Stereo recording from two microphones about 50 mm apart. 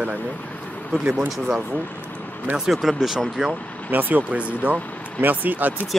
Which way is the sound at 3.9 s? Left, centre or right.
Right.